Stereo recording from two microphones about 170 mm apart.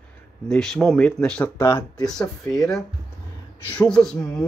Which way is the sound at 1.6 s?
25° left (ahead or behind).